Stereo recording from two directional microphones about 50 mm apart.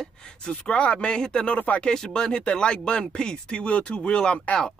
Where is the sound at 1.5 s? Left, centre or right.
Left.